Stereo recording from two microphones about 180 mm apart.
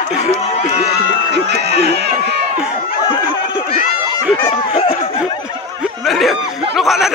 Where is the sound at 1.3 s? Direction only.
65° right (ahead or behind).